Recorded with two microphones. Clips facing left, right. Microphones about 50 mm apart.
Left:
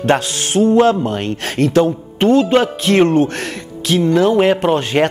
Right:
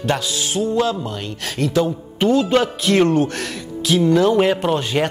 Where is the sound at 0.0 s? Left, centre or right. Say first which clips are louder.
Left 5 dB; left.